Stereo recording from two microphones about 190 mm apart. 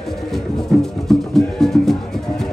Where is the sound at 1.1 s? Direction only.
Centre (ahead or behind).